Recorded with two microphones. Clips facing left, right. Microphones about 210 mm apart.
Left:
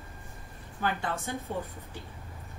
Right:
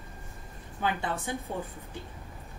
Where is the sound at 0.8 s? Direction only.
15° right (ahead or behind).